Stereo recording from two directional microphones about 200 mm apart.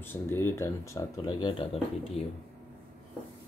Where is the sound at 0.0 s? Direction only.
10° left (ahead or behind); by 2.2 s 30° left (ahead or behind).